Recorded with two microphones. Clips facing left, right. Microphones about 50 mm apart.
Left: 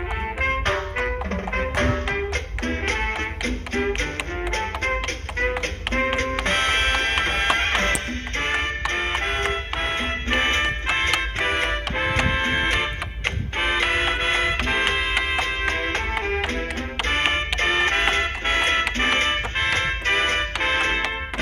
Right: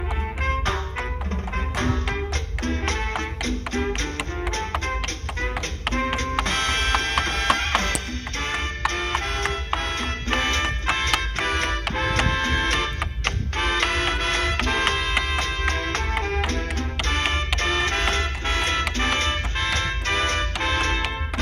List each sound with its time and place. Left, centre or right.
0.4 s music: left